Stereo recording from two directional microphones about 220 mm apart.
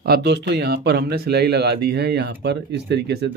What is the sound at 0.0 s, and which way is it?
Speech, 50° right (ahead or behind).